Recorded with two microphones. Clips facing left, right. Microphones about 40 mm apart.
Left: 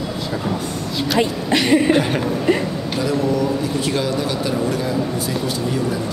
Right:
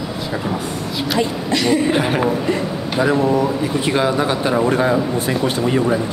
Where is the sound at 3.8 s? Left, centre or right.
Right.